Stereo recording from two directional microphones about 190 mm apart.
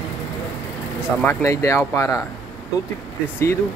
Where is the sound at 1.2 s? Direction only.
15° left (ahead or behind).